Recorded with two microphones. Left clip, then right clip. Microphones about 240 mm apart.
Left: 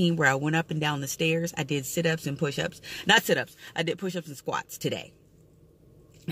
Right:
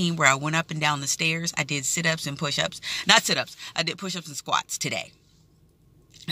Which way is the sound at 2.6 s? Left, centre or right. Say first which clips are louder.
Right 5 dB; right.